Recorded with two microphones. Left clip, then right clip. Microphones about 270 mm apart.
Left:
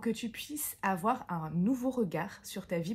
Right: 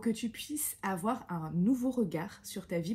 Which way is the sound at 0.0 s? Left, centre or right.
Left.